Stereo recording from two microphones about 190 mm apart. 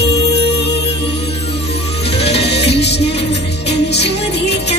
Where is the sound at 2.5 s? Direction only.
60° left (ahead or behind).